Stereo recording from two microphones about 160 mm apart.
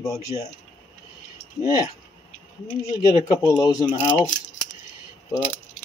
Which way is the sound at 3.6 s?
25° left (ahead or behind).